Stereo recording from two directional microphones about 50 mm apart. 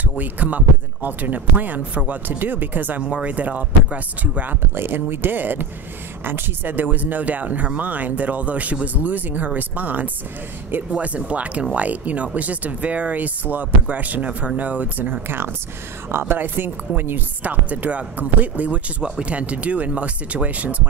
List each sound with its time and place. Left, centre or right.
0.2 s speech: right
3.0 s speech: right
4.7 s speech: right
15.2 s speech: right